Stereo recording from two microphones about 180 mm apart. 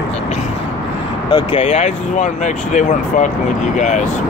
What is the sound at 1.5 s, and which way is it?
Speech, 35° left (ahead or behind).